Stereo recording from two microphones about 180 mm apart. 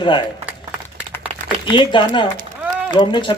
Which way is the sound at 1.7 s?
25° left (ahead or behind).